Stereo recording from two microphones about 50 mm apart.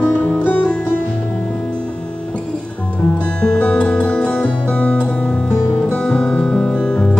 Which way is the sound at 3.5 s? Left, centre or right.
Left.